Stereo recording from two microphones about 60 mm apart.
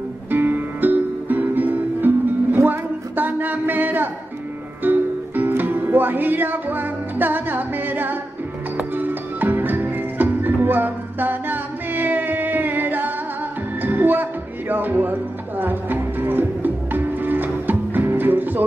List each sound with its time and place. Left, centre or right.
0.3 s music: right